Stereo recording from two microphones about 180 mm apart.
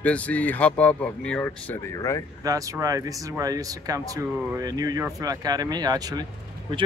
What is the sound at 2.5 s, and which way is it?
Speech, 20° right (ahead or behind).